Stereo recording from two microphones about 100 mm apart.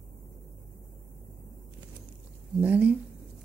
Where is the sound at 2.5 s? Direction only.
15° right (ahead or behind).